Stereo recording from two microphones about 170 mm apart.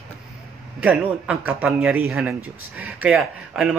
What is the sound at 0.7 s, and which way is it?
A man's voice, 10° right (ahead or behind).